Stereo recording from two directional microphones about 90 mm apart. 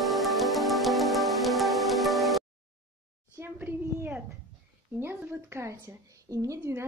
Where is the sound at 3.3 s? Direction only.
25° right (ahead or behind).